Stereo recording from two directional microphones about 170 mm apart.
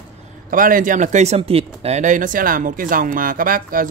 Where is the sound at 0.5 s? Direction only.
55° right (ahead or behind).